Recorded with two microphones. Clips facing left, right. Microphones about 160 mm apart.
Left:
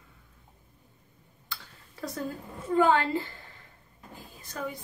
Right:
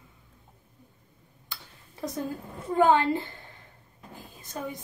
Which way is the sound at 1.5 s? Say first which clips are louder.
Left 2 dB; 20° right (ahead or behind).